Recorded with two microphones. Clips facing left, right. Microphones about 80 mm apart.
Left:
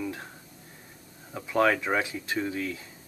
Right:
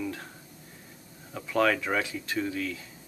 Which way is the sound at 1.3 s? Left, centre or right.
Centre.